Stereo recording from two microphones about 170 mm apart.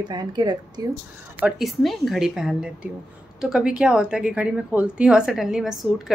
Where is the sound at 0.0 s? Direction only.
25° right (ahead or behind).